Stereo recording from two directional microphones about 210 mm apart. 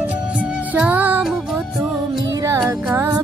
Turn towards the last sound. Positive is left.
turn(degrees=-10)  # may be behind; listen again after turning